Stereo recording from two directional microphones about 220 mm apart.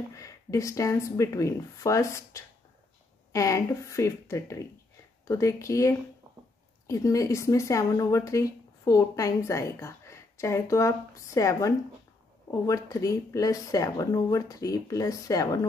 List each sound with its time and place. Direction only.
0.1 s speech: 15° left (ahead or behind)